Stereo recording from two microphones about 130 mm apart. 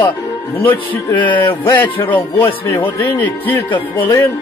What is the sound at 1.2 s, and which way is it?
A man's voice, 15° left (ahead or behind).